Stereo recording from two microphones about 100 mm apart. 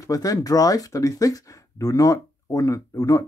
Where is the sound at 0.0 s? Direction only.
35° left (ahead or behind).